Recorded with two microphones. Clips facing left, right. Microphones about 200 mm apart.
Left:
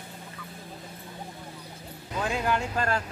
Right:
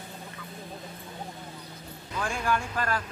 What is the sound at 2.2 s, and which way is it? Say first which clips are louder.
Speech: left 2 dB; 20° left (ahead or behind).